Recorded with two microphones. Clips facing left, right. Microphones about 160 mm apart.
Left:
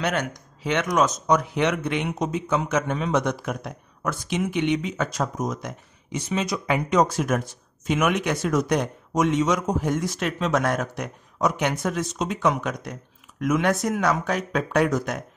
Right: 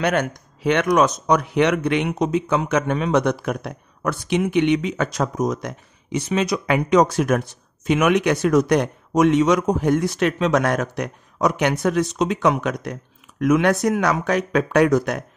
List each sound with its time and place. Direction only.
0.0 s speech: 55° right (ahead or behind)